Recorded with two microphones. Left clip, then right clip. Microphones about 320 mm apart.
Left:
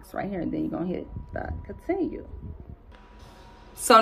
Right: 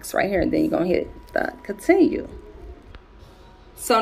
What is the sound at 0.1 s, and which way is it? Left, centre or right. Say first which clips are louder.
Speech: right 11 dB; right.